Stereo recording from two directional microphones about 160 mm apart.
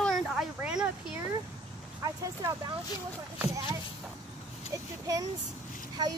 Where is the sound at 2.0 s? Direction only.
20° right (ahead or behind).